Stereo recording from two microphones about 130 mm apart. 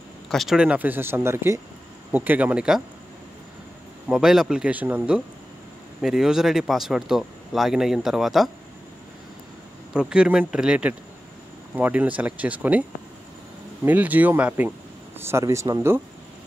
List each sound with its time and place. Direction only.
0.3 s speech: centre (ahead or behind)
4.1 s speech: 5° right (ahead or behind)
9.9 s speech: 5° right (ahead or behind)
13.8 s speech: 15° right (ahead or behind)